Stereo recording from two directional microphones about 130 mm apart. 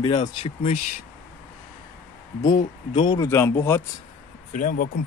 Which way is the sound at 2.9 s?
40° left (ahead or behind).